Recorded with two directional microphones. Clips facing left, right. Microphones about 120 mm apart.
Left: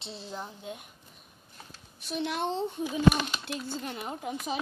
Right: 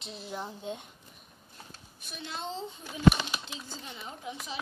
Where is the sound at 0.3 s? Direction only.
10° right (ahead or behind).